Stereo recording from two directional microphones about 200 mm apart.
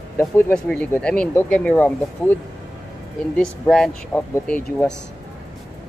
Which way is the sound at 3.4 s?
5° left (ahead or behind).